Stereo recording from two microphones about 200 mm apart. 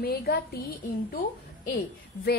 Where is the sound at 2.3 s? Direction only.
55° left (ahead or behind).